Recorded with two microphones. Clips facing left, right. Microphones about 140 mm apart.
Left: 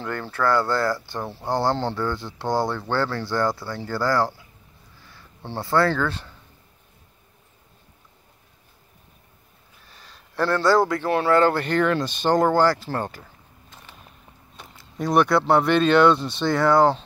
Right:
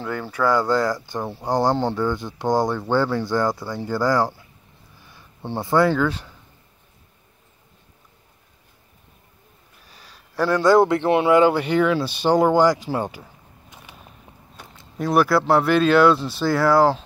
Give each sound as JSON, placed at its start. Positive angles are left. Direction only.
{"t": 0.0, "sound": "speech", "side_deg": -10}
{"t": 9.8, "sound": "speech", "side_deg": -10}
{"t": 15.0, "sound": "speech", "side_deg": -5}